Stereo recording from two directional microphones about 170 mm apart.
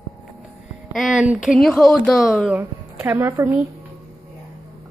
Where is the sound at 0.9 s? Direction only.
5° right (ahead or behind).